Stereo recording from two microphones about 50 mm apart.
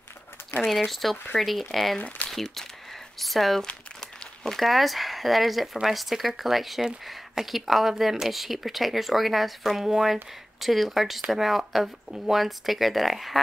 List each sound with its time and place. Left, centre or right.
0.7 s speech: centre
2.0 s speech: left
2.3 s speech: centre